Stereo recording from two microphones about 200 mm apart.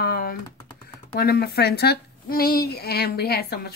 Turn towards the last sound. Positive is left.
turn(degrees=50)  # may be behind; listen again after turning